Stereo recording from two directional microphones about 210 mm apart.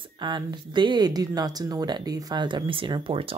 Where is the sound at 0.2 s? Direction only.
20° right (ahead or behind).